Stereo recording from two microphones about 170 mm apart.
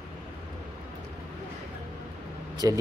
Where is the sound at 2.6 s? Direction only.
20° right (ahead or behind).